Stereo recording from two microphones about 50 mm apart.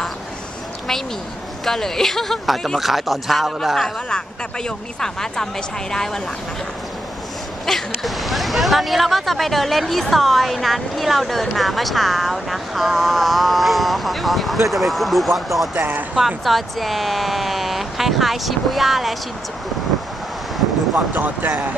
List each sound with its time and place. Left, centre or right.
1.6 s speech: centre
7.6 s speech: centre
15.8 s speech: right
16.2 s speech: centre
21.1 s speech: right